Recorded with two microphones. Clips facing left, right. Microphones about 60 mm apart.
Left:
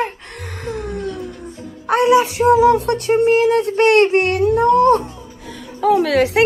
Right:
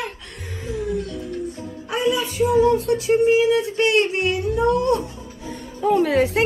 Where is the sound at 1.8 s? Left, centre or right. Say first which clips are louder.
Left 9 dB; left.